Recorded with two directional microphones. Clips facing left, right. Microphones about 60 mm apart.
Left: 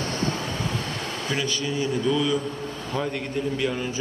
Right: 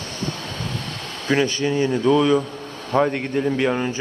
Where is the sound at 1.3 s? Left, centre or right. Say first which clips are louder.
Right 9 dB; right.